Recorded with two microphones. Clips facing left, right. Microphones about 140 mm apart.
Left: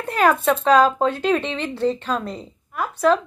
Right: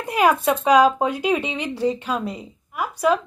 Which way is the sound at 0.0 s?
10° right (ahead or behind).